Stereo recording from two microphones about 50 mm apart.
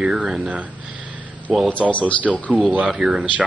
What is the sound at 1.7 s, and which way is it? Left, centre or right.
Speech, left.